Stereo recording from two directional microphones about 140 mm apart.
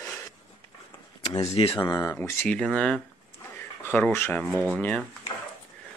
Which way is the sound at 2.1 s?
15° left (ahead or behind).